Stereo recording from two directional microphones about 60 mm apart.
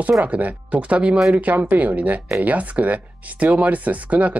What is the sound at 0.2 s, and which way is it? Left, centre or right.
Speech, right.